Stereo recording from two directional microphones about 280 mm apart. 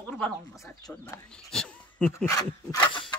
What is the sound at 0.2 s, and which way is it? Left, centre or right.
Speech, centre.